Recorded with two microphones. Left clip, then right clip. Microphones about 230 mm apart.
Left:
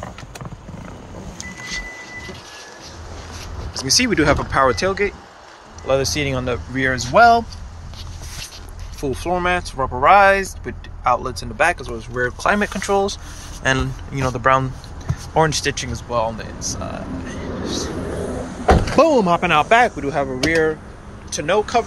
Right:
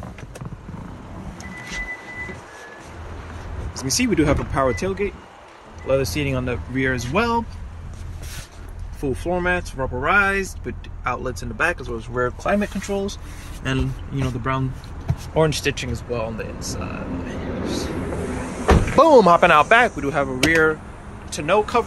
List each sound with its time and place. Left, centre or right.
3.7 s speech: centre
9.0 s speech: centre
12.4 s speech: centre
15.3 s speech: centre
18.9 s speech: right
19.7 s speech: centre